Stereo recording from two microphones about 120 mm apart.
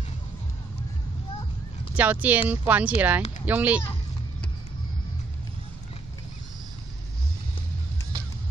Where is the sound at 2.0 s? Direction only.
15° right (ahead or behind).